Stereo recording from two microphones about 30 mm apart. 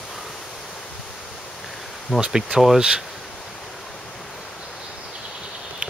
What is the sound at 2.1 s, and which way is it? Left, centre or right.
Speech, right.